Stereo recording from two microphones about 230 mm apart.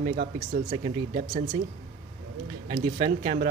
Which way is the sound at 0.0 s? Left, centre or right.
Right.